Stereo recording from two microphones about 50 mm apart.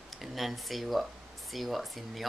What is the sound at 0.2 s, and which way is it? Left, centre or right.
Speech, centre.